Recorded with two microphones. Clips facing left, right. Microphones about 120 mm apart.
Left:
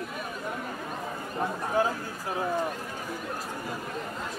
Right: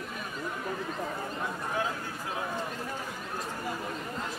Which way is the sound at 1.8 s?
35° left (ahead or behind).